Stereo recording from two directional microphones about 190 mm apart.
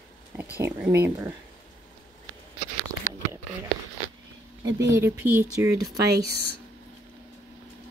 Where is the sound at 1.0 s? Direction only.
15° right (ahead or behind).